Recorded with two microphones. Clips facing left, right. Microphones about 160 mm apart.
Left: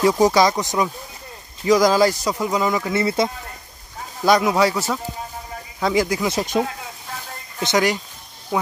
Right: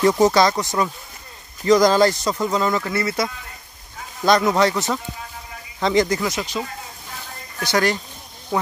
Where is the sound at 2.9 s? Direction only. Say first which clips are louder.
Left 3 dB; 25° left (ahead or behind).